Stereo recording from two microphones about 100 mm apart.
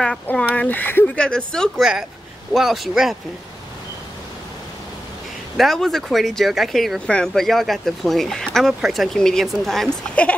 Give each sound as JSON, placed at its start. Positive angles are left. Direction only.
{"t": 0.6, "sound": "speech", "side_deg": 15}
{"t": 5.6, "sound": "speech", "side_deg": 5}